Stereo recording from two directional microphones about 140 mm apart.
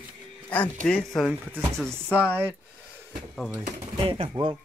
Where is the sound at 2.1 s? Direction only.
10° right (ahead or behind).